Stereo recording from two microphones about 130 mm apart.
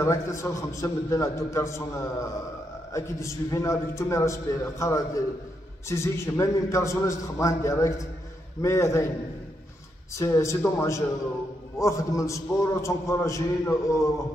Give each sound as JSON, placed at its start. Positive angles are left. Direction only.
{"t": 0.0, "sound": "a man's voice", "side_deg": 25}
{"t": 10.1, "sound": "a man's voice", "side_deg": 20}